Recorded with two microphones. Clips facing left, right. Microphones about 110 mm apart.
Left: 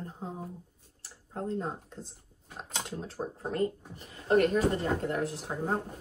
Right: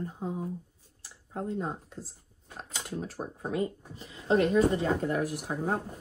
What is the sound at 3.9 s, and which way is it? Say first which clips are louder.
Speech: even; 90° right.